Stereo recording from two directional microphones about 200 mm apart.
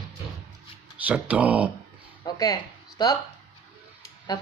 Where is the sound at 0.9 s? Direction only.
5° right (ahead or behind).